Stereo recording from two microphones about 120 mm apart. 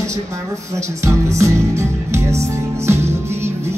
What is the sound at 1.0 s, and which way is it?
Music, 25° right (ahead or behind).